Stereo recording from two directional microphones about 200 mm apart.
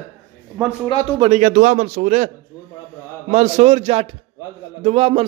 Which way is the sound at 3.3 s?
35° right (ahead or behind).